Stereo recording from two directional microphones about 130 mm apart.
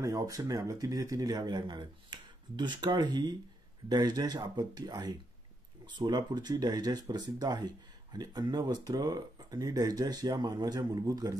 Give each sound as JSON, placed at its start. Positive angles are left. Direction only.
{"t": 0.0, "sound": "speech", "side_deg": -25}